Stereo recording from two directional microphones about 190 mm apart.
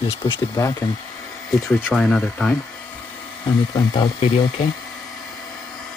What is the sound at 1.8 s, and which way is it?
Speech, centre (ahead or behind).